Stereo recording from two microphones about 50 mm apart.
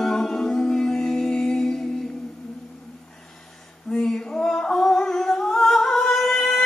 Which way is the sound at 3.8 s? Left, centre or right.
Centre.